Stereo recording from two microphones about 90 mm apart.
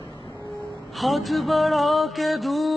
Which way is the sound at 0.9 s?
Centre (ahead or behind).